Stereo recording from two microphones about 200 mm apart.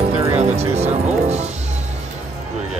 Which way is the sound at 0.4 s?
30° right (ahead or behind).